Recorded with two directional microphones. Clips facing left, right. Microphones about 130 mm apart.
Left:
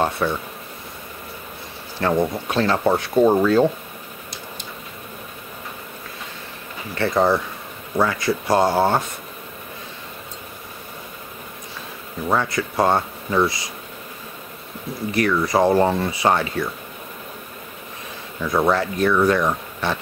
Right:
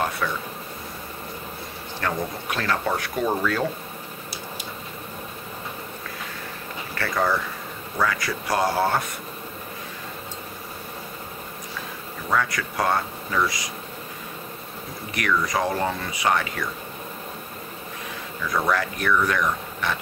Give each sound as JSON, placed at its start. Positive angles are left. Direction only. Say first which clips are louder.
{"t": 0.2, "sound": "speech", "louder": "left 5 dB", "side_deg": 30}
{"t": 2.0, "sound": "speech", "louder": "left 8 dB", "side_deg": 30}
{"t": 7.0, "sound": "speech", "louder": "left 6 dB", "side_deg": 25}
{"t": 12.3, "sound": "speech", "louder": "left 3 dB", "side_deg": 30}
{"t": 15.0, "sound": "speech", "louder": "left 5 dB", "side_deg": 30}
{"t": 18.4, "sound": "speech", "louder": "left 5 dB", "side_deg": 25}